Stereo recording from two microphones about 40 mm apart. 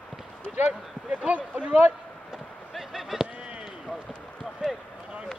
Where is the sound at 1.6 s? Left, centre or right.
Right.